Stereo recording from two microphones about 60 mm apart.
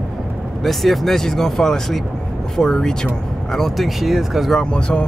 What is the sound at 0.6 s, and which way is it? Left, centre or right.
Speech, centre.